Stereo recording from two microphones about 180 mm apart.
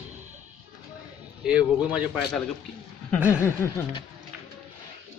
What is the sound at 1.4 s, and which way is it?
Speech, 5° right (ahead or behind).